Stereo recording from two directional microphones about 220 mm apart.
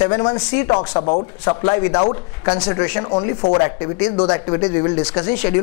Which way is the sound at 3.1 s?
30° left (ahead or behind).